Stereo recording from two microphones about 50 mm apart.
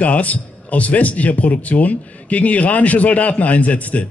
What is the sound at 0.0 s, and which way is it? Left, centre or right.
A man's voice, left.